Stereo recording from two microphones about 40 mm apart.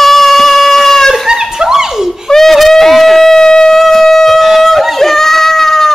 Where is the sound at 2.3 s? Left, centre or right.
Centre.